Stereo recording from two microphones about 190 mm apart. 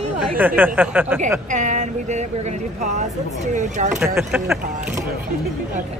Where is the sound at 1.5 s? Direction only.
40° right (ahead or behind).